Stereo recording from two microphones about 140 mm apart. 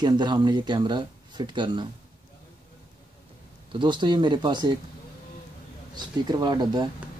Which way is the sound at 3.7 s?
35° right (ahead or behind).